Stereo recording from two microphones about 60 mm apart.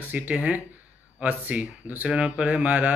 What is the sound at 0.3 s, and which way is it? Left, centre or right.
Speech, right.